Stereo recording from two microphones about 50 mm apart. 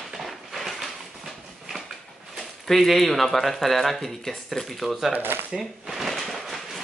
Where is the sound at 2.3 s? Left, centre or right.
Centre.